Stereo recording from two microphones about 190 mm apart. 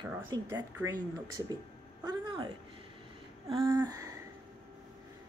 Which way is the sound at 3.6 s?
20° right (ahead or behind).